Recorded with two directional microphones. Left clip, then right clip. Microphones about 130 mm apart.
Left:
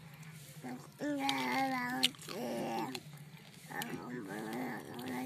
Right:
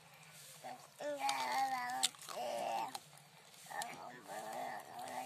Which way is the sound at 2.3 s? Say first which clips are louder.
Left 1 dB; 10° right (ahead or behind).